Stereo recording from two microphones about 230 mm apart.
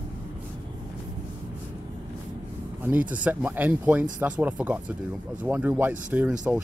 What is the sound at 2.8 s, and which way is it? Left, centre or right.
Speech, centre.